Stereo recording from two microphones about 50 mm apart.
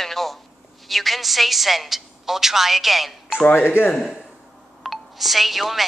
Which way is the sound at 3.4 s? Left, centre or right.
Left.